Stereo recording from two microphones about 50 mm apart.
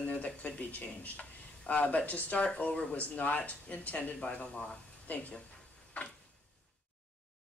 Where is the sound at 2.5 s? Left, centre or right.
Left.